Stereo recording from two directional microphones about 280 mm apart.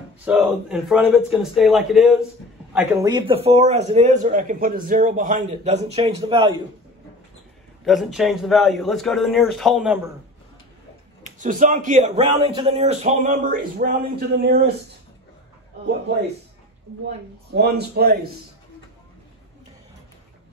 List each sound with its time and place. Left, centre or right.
0.2 s a man's voice: centre
7.8 s speech: centre
11.2 s a man's voice: right
17.6 s a man's voice: right